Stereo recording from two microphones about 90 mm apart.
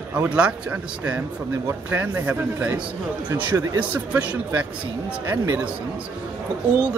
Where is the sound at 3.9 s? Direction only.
15° right (ahead or behind).